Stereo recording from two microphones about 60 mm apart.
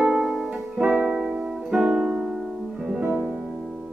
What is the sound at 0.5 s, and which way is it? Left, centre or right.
Music, centre.